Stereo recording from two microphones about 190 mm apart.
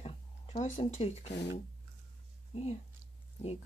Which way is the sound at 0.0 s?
35° left (ahead or behind).